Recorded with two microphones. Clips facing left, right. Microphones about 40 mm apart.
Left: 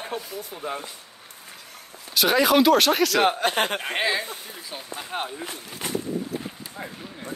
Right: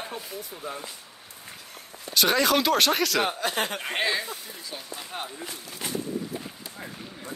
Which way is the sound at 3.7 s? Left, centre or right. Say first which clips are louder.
Left 2 dB; centre.